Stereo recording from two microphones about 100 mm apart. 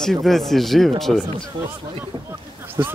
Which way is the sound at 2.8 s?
30° right (ahead or behind).